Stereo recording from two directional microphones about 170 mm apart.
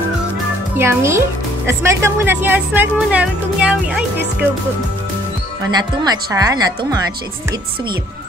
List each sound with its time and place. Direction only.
0.7 s speech: 15° right (ahead or behind)
5.7 s speech: 25° right (ahead or behind)